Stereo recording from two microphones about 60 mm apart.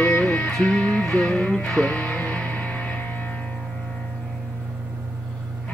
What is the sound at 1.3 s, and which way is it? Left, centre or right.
Speech, left.